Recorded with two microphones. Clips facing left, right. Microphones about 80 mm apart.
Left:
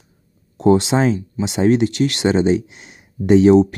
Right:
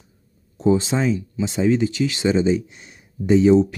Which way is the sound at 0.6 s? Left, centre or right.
Left.